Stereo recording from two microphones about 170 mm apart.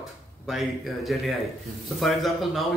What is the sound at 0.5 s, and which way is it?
Speech, centre (ahead or behind).